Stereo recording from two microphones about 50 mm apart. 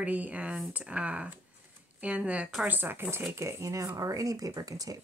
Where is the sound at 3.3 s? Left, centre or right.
Right.